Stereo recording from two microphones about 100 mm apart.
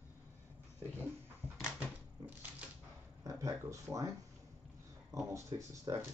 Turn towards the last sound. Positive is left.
turn(degrees=-35)  # may be behind; listen again after turning